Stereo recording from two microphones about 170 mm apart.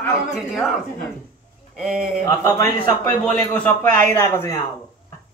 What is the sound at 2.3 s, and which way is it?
Speech, 20° left (ahead or behind).